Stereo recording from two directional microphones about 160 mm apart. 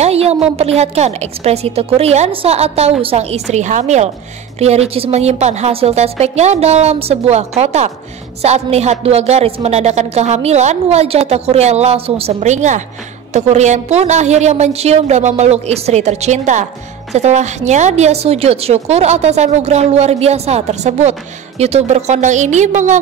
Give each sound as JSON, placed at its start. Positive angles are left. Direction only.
{"t": 0.0, "sound": "a woman's voice", "side_deg": -40}